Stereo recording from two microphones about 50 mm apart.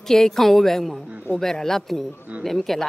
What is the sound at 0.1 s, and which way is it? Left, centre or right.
Speech, centre.